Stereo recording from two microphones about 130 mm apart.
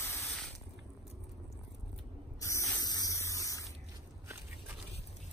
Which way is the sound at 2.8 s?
30° left (ahead or behind).